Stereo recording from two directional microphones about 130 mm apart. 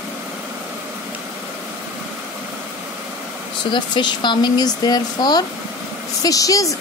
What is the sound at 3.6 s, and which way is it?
A woman's voice, 35° left (ahead or behind).